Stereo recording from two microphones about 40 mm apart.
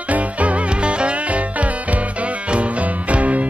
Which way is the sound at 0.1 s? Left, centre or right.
Right.